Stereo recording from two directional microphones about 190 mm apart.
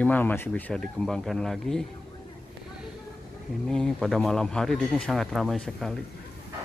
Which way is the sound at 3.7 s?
5° left (ahead or behind).